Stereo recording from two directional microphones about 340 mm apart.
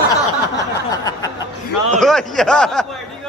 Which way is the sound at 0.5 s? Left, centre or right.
Centre.